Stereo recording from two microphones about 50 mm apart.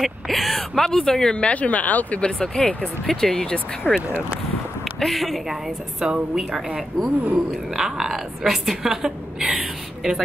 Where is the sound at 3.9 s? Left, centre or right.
Centre.